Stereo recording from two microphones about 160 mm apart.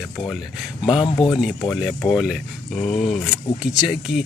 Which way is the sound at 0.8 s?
Centre (ahead or behind).